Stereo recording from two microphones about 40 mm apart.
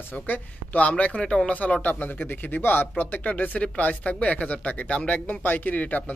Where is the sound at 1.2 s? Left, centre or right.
Centre.